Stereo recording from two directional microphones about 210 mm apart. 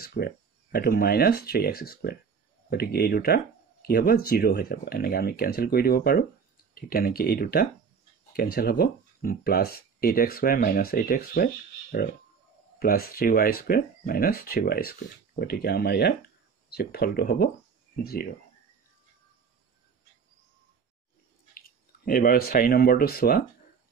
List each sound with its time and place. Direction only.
0.0 s speech: 50° left (ahead or behind)
21.5 s speech: 40° left (ahead or behind)